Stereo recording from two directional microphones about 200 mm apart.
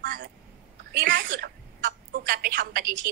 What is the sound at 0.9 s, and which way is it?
Speech, 50° right (ahead or behind).